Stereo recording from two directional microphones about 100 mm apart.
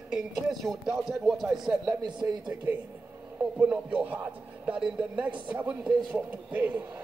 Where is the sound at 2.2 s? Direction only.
25° right (ahead or behind).